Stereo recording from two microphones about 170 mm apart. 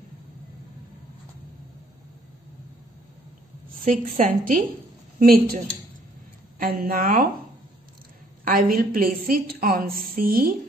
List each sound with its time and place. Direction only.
4.1 s a woman's voice: 50° right (ahead or behind)
6.6 s a woman's voice: 60° right (ahead or behind)
8.5 s a woman's voice: 55° right (ahead or behind)